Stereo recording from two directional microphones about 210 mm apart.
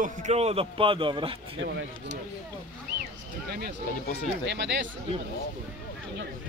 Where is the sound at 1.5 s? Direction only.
60° right (ahead or behind).